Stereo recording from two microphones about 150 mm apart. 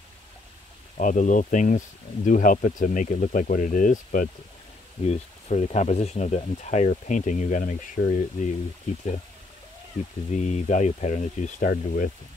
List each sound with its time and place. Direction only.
0.9 s speech: 60° left (ahead or behind)
5.0 s speech: 45° left (ahead or behind)
10.3 s speech: 50° left (ahead or behind)
11.7 s speech: 65° left (ahead or behind)